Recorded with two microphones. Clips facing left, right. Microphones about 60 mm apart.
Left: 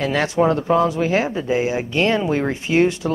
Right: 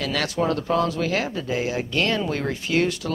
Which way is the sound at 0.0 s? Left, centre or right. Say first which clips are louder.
Left 6 dB; left.